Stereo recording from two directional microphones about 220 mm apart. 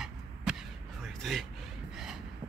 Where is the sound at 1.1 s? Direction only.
Centre (ahead or behind).